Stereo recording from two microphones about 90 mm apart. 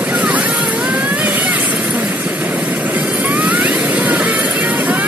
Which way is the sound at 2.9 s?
15° right (ahead or behind).